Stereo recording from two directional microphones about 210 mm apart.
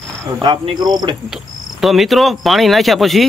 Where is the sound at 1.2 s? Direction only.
Centre (ahead or behind).